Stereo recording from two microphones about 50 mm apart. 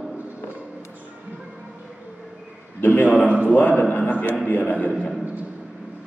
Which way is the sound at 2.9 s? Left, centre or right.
Left.